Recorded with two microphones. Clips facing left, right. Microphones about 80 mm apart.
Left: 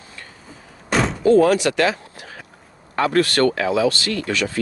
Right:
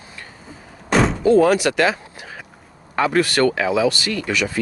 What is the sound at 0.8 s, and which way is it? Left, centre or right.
Door, centre.